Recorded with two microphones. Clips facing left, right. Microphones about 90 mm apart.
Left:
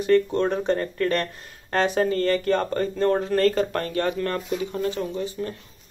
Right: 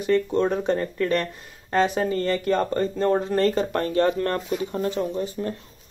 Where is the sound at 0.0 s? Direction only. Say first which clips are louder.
Left 1 dB; 10° right (ahead or behind).